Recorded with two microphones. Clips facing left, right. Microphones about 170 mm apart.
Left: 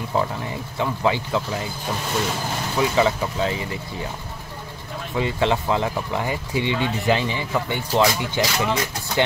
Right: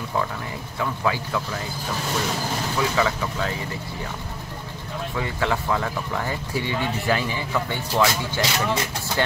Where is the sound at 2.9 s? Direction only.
25° left (ahead or behind).